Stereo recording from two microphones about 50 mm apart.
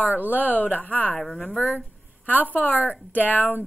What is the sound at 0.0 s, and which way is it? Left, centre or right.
Speech, right.